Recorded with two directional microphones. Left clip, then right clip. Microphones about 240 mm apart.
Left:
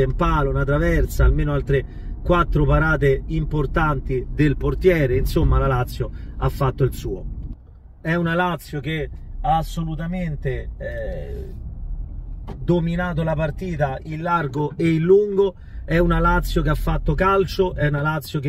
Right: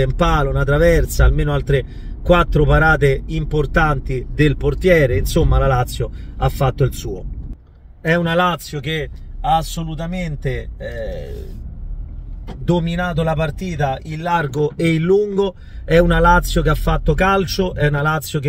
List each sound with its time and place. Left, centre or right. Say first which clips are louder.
0.0 s a man's voice: right 3 dB; centre
10.4 s a man's voice: right 3 dB; centre
12.6 s a man's voice: right 3 dB; centre